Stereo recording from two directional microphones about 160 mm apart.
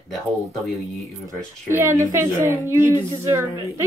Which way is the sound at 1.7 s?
15° right (ahead or behind).